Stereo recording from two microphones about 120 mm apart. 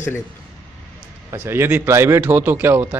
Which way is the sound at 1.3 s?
20° right (ahead or behind).